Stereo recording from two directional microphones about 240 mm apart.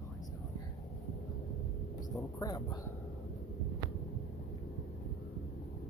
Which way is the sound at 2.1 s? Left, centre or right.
Centre.